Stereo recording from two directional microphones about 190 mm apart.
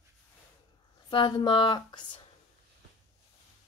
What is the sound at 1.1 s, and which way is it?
Speech, 25° left (ahead or behind).